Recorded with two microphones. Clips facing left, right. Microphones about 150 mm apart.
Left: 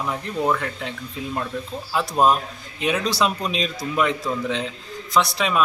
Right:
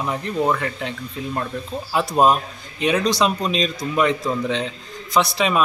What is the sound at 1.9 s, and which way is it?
A man's voice, 5° right (ahead or behind).